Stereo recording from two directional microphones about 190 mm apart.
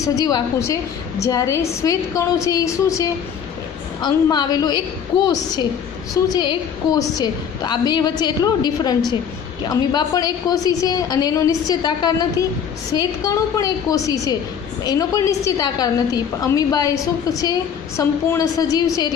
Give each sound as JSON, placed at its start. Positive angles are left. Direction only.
{"t": 0.0, "sound": "a woman's voice", "side_deg": 20}